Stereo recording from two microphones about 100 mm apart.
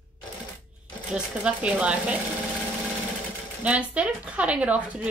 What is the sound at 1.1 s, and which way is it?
A woman's voice, 10° right (ahead or behind).